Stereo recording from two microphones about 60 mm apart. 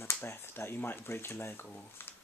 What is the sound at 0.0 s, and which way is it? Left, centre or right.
Speech, left.